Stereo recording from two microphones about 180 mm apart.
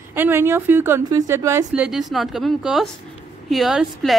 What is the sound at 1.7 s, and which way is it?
A woman's voice, 5° right (ahead or behind).